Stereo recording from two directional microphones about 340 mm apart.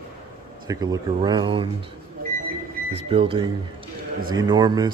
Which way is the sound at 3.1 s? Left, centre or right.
Centre.